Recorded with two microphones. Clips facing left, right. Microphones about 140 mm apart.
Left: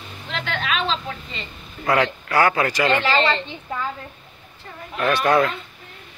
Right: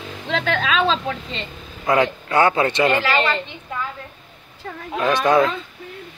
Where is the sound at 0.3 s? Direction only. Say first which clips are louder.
Right 5 dB; 90° right.